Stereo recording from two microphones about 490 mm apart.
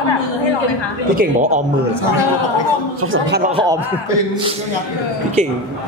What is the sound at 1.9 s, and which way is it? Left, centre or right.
Speech, left.